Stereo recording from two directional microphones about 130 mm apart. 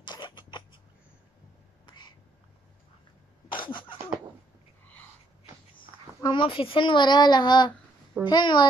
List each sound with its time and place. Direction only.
0.0 s rodents: 35° left (ahead or behind)
3.5 s a sound: 40° left (ahead or behind)
6.2 s speech: 40° left (ahead or behind)